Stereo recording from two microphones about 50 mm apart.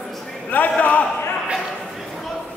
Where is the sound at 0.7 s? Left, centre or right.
Left.